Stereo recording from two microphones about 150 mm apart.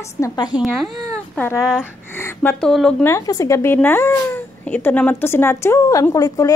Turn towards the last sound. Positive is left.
turn(degrees=25)  # may be behind; listen again after turning